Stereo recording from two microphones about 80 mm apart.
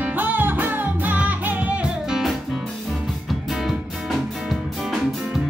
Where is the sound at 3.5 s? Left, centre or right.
Centre.